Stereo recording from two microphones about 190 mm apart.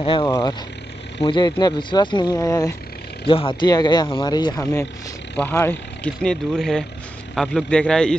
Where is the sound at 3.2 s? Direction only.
30° left (ahead or behind).